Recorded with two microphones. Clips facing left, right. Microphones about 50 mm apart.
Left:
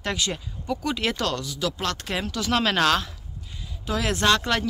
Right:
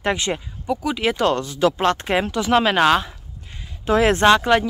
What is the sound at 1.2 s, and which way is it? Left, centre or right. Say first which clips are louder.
Speech: right 9 dB; right.